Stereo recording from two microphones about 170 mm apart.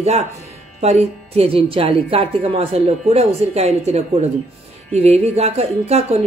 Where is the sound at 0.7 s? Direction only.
40° right (ahead or behind).